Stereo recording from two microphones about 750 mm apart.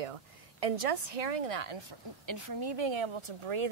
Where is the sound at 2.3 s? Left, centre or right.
Right.